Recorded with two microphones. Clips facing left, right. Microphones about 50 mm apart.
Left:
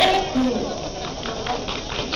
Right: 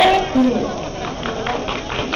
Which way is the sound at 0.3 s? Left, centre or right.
Right.